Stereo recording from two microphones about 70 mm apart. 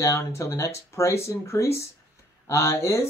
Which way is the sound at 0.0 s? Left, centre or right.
Left.